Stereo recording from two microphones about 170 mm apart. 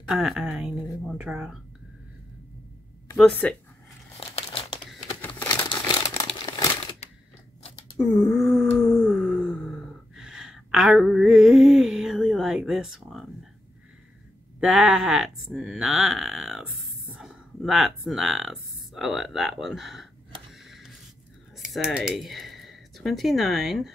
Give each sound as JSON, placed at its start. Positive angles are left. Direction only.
{"t": 0.1, "sound": "speech", "side_deg": 0}
{"t": 3.2, "sound": "speech", "side_deg": 5}
{"t": 4.5, "sound": "crumpling", "side_deg": 30}
{"t": 6.1, "sound": "crumpling", "side_deg": 25}
{"t": 8.0, "sound": "groan", "side_deg": 0}
{"t": 14.6, "sound": "speech", "side_deg": 0}
{"t": 20.5, "sound": "a sound", "side_deg": 0}
{"t": 21.7, "sound": "speech", "side_deg": -5}